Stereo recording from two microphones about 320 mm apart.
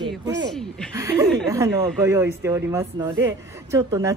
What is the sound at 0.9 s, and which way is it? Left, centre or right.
Speech, centre.